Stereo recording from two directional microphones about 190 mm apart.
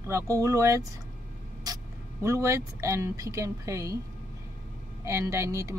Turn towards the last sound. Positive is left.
turn(degrees=-15)  # may be behind; listen again after turning